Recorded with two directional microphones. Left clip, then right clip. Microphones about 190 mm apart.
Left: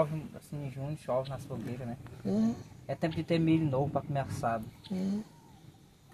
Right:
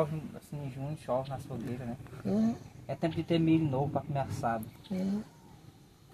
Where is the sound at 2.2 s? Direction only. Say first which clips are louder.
Even; 5° left (ahead or behind).